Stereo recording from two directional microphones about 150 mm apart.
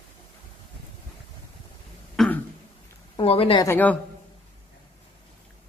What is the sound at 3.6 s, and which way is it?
Speech, 15° left (ahead or behind).